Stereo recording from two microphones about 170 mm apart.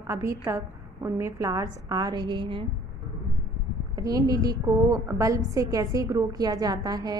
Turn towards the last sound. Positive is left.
turn(degrees=-25)  # may be behind; listen again after turning